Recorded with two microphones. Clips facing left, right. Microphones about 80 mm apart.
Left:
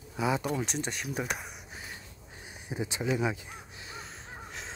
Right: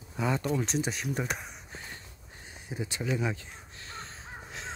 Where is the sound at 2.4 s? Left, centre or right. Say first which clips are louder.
Left 2 dB; centre.